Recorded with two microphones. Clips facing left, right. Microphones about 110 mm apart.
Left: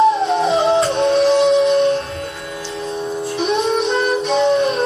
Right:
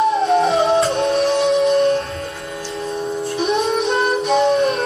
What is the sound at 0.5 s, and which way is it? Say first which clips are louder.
Music: left 1 dB; 25° left (ahead or behind).